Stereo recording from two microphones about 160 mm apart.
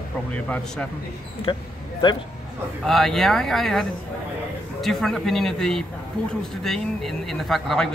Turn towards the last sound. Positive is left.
turn(degrees=0)  # may be behind; listen again after turning